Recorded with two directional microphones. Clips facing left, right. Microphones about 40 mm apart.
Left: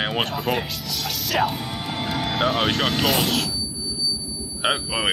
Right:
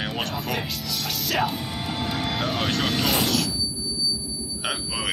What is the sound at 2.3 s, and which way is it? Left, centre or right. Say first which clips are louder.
Speech: left 7 dB; left.